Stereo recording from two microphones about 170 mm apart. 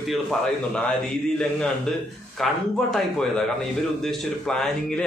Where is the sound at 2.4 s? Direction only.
Centre (ahead or behind).